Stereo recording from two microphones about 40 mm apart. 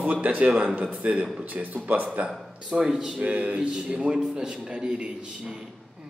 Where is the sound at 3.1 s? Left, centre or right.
Right.